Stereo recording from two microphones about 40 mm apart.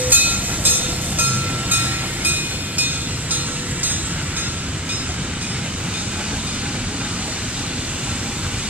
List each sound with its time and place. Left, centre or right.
0.0 s train: right